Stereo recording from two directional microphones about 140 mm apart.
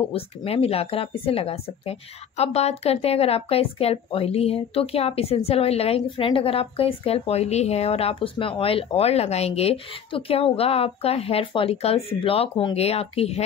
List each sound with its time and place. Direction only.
0.1 s speech: 45° left (ahead or behind)